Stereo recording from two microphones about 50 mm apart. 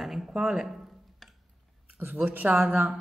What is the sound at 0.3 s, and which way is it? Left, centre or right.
Speech, centre.